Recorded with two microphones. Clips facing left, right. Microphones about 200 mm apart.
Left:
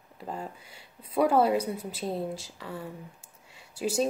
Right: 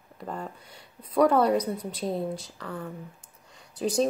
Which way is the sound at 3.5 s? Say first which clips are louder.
Right 2 dB; 5° left (ahead or behind).